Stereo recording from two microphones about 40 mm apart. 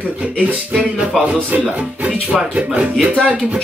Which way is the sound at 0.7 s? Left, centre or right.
Right.